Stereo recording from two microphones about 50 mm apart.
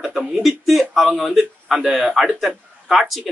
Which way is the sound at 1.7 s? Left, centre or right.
Centre.